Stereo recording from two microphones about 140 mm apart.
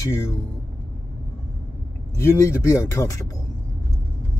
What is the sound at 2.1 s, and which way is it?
Speech, 20° left (ahead or behind).